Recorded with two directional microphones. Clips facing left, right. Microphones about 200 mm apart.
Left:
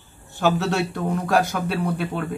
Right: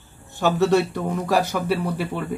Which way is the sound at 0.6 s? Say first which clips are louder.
Right 5 dB; centre (ahead or behind).